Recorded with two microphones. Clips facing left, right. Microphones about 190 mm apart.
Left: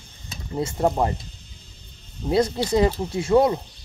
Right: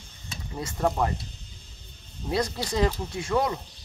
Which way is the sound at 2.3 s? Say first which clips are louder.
Left 7 dB; 25° left (ahead or behind).